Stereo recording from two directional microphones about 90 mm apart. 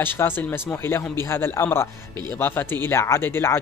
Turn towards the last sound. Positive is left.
turn(degrees=25)  # may be behind; listen again after turning